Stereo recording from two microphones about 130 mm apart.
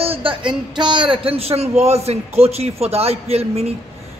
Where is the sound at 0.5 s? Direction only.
35° right (ahead or behind).